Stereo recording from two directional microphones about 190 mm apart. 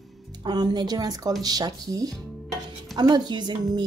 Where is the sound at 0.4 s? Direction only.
25° right (ahead or behind).